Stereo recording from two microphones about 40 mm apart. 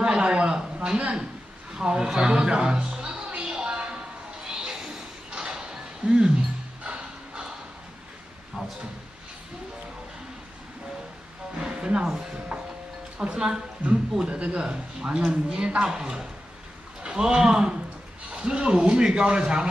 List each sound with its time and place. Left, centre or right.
0.0 s a sound: right
1.7 s a sound: centre
6.0 s a man's voice: right
6.8 s music: right
8.6 s drawer open or close: centre
11.6 s music: right
13.2 s a man's voice: right